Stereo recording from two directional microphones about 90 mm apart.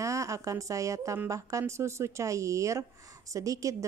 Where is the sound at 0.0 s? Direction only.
35° right (ahead or behind).